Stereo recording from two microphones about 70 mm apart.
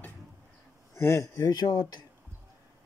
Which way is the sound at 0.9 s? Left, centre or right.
Left.